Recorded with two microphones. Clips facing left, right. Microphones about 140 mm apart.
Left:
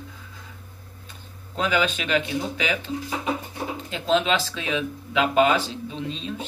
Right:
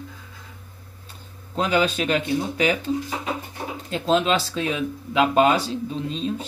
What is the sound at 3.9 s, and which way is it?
Speech, 40° right (ahead or behind).